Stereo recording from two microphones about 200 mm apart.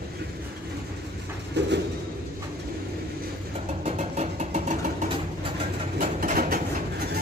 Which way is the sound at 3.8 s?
30° right (ahead or behind).